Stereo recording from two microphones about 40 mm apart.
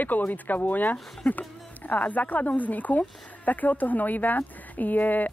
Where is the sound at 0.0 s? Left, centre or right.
Left.